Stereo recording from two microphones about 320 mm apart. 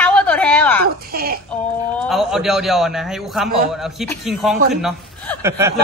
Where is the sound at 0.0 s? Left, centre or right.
Centre.